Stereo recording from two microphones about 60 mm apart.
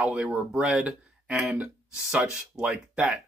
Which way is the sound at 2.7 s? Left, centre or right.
Right.